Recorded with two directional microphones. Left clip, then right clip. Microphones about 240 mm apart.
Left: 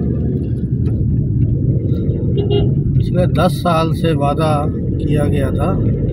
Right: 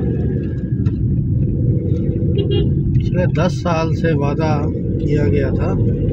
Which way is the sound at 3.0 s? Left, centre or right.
Centre.